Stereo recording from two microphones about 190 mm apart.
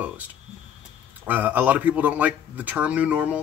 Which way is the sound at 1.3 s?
10° right (ahead or behind).